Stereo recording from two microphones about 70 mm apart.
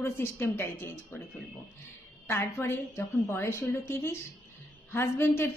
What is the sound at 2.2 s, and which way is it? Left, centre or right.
A woman's voice, left.